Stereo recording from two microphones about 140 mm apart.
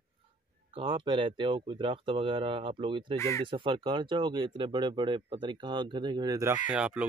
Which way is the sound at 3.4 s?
35° right (ahead or behind).